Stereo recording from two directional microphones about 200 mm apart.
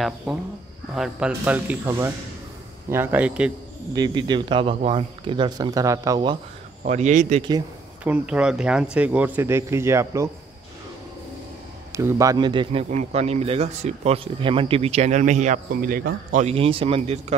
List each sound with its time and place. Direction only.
0.3 s speech: centre (ahead or behind)
3.9 s speech: 20° right (ahead or behind)
6.8 s speech: 35° right (ahead or behind)
8.0 s speech: 5° right (ahead or behind)
11.9 s speech: 15° right (ahead or behind); by 17.4 s 30° right (ahead or behind)